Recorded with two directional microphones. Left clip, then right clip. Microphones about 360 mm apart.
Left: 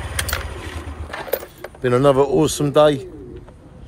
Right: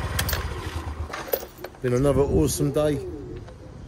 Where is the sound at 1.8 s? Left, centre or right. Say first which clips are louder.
Left 7 dB; centre.